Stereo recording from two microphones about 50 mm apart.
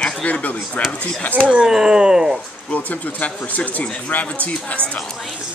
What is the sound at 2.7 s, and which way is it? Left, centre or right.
Speech, left.